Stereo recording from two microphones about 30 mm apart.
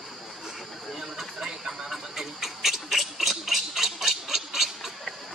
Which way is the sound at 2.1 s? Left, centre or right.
Centre.